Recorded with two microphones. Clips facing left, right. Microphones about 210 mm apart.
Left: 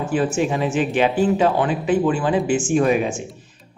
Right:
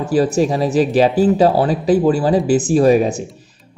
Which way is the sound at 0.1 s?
35° right (ahead or behind).